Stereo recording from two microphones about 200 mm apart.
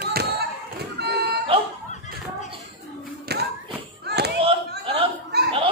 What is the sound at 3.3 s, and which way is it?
Clapping, 55° right (ahead or behind).